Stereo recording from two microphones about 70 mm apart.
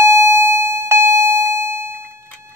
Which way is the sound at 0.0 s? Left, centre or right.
Right.